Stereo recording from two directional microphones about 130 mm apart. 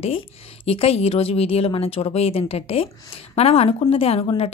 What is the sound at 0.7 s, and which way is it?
Speech, 50° left (ahead or behind).